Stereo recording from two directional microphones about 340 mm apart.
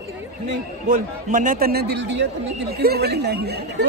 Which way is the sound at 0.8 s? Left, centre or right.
Right.